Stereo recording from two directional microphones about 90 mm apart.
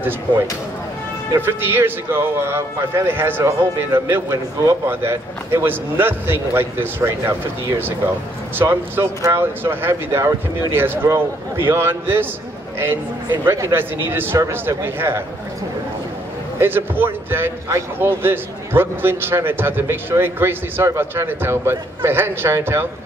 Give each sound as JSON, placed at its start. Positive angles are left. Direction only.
{"t": 1.4, "sound": "a man's voice", "side_deg": -25}
{"t": 8.5, "sound": "a man's voice", "side_deg": -25}
{"t": 16.5, "sound": "a man's voice", "side_deg": -25}